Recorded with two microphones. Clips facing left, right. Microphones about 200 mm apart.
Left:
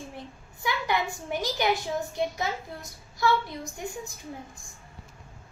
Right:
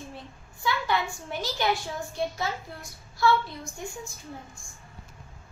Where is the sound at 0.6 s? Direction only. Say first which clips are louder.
Even; 15° left (ahead or behind).